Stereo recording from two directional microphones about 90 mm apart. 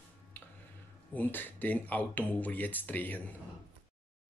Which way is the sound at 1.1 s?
20° left (ahead or behind).